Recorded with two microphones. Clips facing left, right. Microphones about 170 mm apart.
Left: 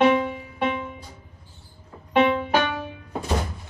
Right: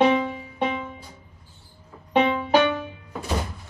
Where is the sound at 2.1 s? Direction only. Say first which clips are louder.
Left 1 dB; 20° right (ahead or behind).